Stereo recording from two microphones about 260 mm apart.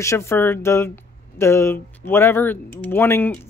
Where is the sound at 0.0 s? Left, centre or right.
Centre.